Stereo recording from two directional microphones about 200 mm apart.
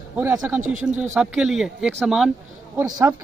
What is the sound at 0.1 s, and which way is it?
A man's voice, 10° right (ahead or behind).